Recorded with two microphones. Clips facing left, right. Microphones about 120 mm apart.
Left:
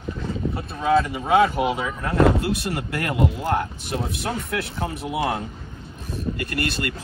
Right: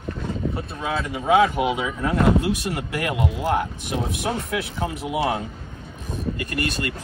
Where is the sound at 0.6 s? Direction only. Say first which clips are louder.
Left 7 dB; centre (ahead or behind).